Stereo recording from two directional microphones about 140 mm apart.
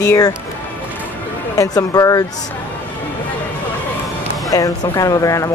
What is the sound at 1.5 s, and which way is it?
Speech, 25° left (ahead or behind).